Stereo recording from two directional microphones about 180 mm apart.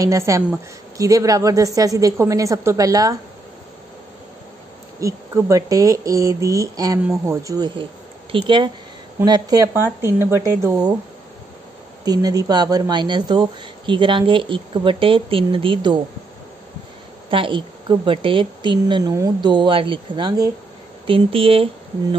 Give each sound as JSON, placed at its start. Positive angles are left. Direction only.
{"t": 0.0, "sound": "a woman's voice", "side_deg": -15}
{"t": 5.0, "sound": "a woman's voice", "side_deg": -15}
{"t": 12.0, "sound": "speech", "side_deg": -20}
{"t": 17.3, "sound": "speech", "side_deg": -30}